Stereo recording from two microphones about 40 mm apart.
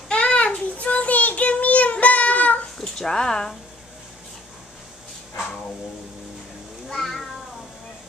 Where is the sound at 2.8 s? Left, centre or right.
Centre.